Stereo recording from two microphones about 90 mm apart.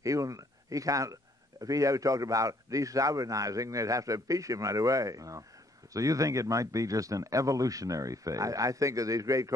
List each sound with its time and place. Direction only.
0.0 s a man's voice: 40° right (ahead or behind)